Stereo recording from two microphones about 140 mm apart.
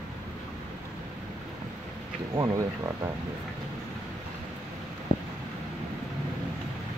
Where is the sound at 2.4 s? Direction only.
25° right (ahead or behind).